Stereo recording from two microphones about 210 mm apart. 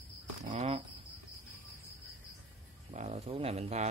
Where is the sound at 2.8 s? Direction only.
30° right (ahead or behind).